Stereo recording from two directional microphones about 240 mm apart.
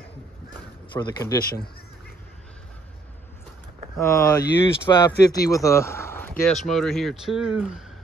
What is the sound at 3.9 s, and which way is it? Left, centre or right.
Speech, centre.